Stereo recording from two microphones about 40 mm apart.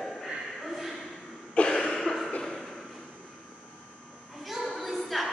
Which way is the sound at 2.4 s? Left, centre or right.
Centre.